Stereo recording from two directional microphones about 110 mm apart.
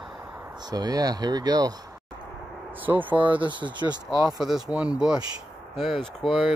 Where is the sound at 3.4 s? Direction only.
45° right (ahead or behind).